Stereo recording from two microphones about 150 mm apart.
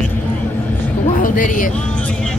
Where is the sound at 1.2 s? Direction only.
65° left (ahead or behind).